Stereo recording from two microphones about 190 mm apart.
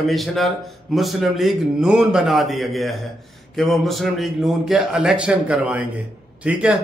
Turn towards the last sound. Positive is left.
turn(degrees=-5)  # may be behind; listen again after turning